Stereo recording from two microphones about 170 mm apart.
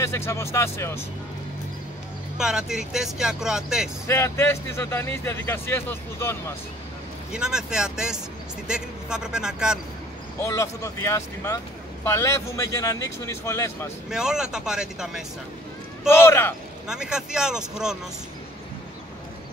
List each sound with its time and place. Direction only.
0.0 s speech: 15° left (ahead or behind)
2.3 s speech: 5° right (ahead or behind)
4.1 s speech: 15° left (ahead or behind)
7.3 s speech: 5° right (ahead or behind)
10.4 s speech: 15° left (ahead or behind)
14.1 s speech: 5° right (ahead or behind)
16.1 s speech: 15° left (ahead or behind)
16.8 s speech: 5° right (ahead or behind)